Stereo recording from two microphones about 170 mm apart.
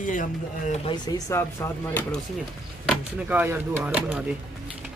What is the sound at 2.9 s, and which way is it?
Speech, 10° right (ahead or behind).